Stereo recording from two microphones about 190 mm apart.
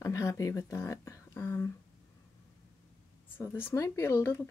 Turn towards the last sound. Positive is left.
turn(degrees=15)  # may be behind; listen again after turning